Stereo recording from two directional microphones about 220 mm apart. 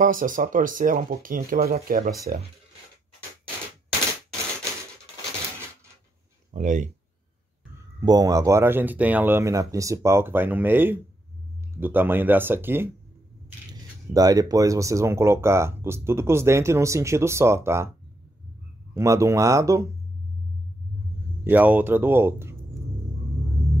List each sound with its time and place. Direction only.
0.0 s speech: 35° right (ahead or behind)
6.5 s speech: 35° right (ahead or behind)
8.0 s speech: 15° right (ahead or behind)
14.1 s speech: 15° right (ahead or behind)
18.9 s speech: 15° right (ahead or behind)
21.5 s speech: 10° right (ahead or behind)